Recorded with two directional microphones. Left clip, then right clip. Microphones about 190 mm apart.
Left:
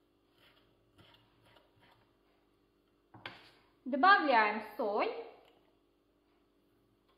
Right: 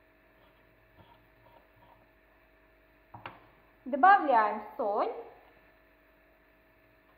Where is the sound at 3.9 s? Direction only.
25° left (ahead or behind).